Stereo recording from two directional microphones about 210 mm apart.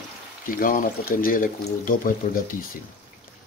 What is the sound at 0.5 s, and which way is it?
Speech, 40° left (ahead or behind).